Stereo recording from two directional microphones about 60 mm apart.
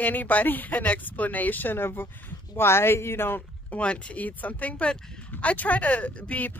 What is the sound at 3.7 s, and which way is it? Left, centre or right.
Speech, centre.